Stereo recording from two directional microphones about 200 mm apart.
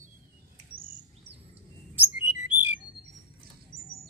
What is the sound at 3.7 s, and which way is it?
Bird, 30° right (ahead or behind).